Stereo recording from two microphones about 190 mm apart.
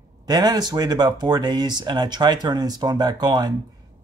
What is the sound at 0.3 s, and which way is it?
Speech, 20° right (ahead or behind).